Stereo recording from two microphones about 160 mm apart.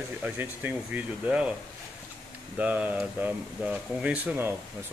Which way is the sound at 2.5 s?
10° right (ahead or behind).